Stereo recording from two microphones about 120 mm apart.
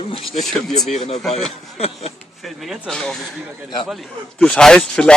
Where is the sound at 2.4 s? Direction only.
Centre (ahead or behind).